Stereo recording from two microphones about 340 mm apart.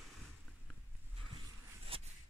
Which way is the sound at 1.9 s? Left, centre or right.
Centre.